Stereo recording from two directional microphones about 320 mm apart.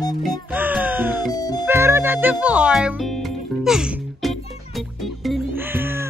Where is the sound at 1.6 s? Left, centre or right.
Centre.